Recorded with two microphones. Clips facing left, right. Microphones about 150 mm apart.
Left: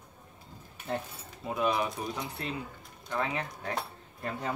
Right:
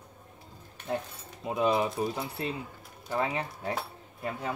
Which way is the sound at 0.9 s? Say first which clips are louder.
Right 2 dB; 5° right (ahead or behind).